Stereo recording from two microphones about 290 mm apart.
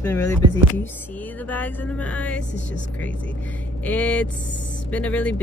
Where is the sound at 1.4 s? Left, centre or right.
Centre.